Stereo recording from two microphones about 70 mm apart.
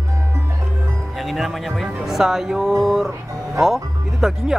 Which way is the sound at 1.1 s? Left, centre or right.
Centre.